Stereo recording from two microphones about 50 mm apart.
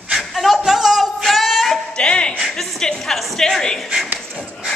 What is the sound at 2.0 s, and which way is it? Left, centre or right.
Music, centre.